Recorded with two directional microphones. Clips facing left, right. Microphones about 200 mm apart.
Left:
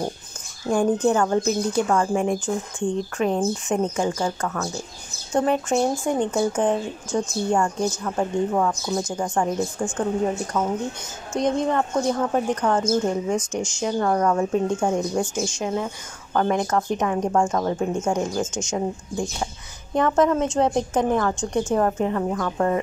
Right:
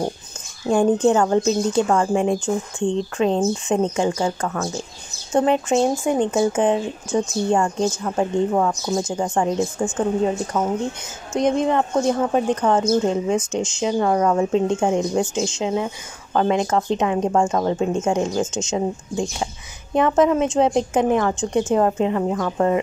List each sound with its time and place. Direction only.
0.7 s speech: 25° right (ahead or behind)